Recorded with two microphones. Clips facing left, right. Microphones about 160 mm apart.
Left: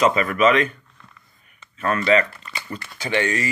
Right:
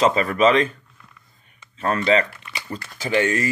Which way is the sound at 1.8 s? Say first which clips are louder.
Even; 30° right (ahead or behind).